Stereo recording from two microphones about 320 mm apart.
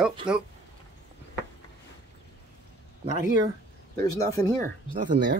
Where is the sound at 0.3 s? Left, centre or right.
Centre.